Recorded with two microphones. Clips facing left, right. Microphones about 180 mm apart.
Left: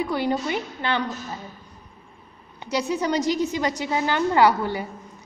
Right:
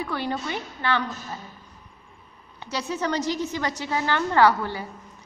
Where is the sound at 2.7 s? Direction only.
15° left (ahead or behind).